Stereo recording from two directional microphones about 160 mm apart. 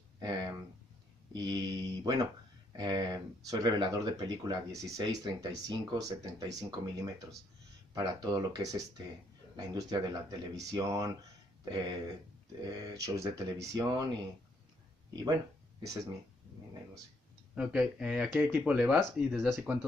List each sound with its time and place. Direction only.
0.2 s a sound: 25° right (ahead or behind)
1.3 s speech: 25° right (ahead or behind)
15.1 s speech: 20° right (ahead or behind)
17.6 s speech: 5° right (ahead or behind)